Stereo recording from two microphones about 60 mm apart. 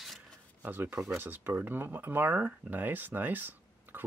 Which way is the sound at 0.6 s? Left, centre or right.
Right.